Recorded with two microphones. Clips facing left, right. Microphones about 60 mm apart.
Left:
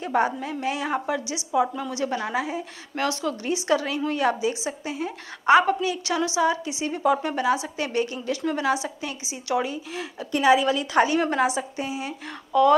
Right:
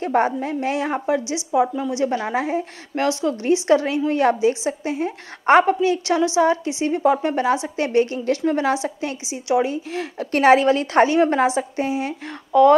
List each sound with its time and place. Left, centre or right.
0.0 s a woman's voice: right
2.3 s a woman's voice: right
3.0 s a woman's voice: right
10.3 s a woman's voice: right